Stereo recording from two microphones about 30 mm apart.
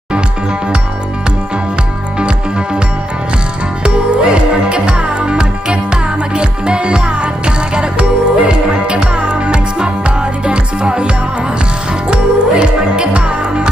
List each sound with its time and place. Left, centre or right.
2.1 s music: right
3.8 s music: right